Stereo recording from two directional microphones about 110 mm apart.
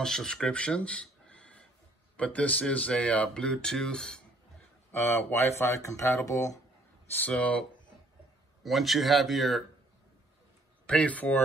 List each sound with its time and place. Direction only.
0.0 s speech: 5° left (ahead or behind)
4.9 s speech: 20° left (ahead or behind)
7.2 s speech: 15° left (ahead or behind)
8.6 s speech: centre (ahead or behind)
10.9 s speech: 10° left (ahead or behind)